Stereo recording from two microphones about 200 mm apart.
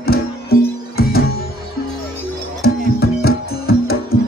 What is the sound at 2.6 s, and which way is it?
Music, 50° left (ahead or behind).